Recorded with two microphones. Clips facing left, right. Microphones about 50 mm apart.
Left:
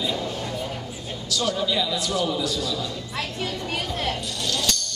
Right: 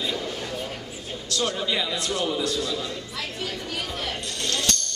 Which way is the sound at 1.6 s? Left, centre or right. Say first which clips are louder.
Left 2 dB; right.